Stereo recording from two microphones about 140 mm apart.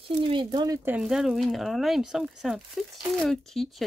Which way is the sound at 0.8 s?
5° right (ahead or behind).